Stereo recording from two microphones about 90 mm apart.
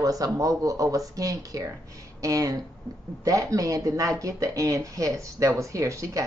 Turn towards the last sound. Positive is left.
turn(degrees=-35)  # may be behind; listen again after turning